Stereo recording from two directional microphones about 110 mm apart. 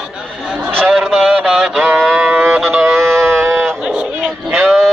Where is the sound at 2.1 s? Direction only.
10° right (ahead or behind).